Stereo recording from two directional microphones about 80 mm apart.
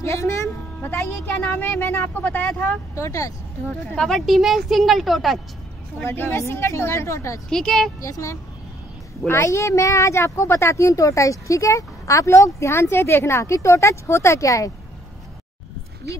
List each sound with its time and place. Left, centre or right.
0.0 s speech: left
0.8 s speech: left
3.0 s speech: left
3.9 s speech: centre
6.0 s speech: left
7.4 s a woman's voice: centre
8.0 s speech: left